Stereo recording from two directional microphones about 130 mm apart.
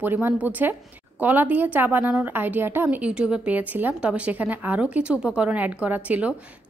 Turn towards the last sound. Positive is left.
turn(degrees=-10)  # may be behind; listen again after turning